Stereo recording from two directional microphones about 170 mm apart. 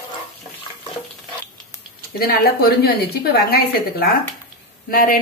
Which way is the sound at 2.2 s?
65° left (ahead or behind).